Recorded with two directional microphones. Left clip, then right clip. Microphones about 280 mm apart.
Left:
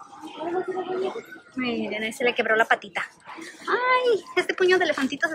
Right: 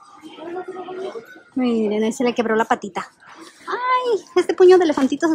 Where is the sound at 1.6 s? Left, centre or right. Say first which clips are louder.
Right 8 dB; centre.